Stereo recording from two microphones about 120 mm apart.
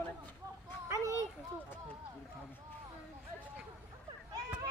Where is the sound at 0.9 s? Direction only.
30° right (ahead or behind).